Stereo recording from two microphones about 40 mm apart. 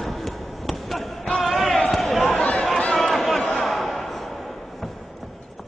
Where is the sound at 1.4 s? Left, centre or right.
Centre.